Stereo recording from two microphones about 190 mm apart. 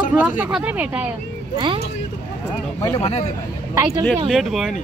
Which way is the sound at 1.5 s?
25° right (ahead or behind).